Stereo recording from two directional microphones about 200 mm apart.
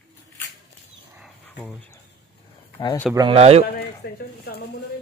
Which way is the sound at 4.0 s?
55° left (ahead or behind).